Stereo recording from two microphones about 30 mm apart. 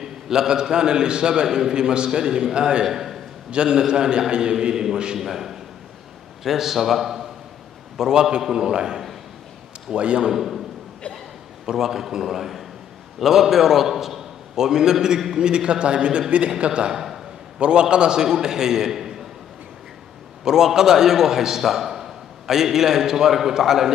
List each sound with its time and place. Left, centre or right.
0.0 s a man's voice: centre
2.8 s a man's voice: centre
3.5 s a man's voice: right
5.1 s a man's voice: centre
8.0 s a man's voice: right
9.9 s a man's voice: right
10.3 s a man's voice: centre
11.6 s a man's voice: centre
15.3 s a man's voice: right
16.9 s a sound: centre
17.6 s a man's voice: right; by 19.2 s centre
20.4 s a man's voice: centre